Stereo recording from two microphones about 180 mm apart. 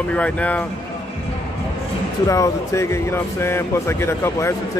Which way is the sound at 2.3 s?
15° left (ahead or behind).